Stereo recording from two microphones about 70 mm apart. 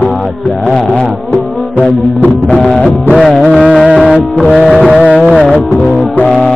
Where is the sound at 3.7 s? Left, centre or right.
Centre.